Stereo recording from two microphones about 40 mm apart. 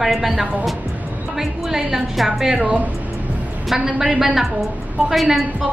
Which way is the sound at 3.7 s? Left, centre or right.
Centre.